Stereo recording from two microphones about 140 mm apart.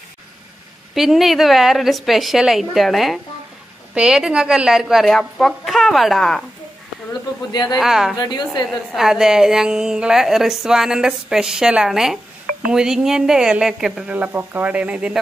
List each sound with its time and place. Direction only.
0.9 s a woman's voice: centre (ahead or behind)
7.5 s a woman's voice: 30° left (ahead or behind)
7.8 s a woman's voice: centre (ahead or behind)
8.2 s a woman's voice: 30° left (ahead or behind)
8.6 s a woman's voice: centre (ahead or behind)